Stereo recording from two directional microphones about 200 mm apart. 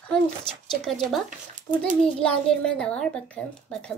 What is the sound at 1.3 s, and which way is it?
Speech, 40° right (ahead or behind).